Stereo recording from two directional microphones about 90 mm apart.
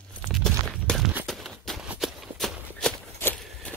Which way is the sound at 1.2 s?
5° left (ahead or behind).